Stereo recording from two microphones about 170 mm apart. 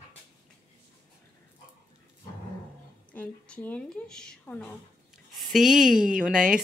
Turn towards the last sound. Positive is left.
turn(degrees=-5)  # may be behind; listen again after turning